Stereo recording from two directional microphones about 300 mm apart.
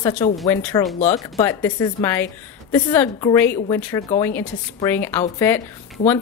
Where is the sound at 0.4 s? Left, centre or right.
Centre.